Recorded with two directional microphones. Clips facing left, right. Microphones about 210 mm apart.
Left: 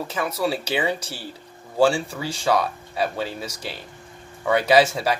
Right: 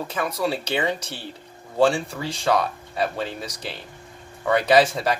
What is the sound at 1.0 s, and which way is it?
Speech, 30° left (ahead or behind).